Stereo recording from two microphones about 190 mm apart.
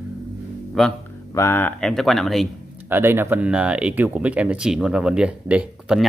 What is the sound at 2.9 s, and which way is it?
Speech, 10° right (ahead or behind).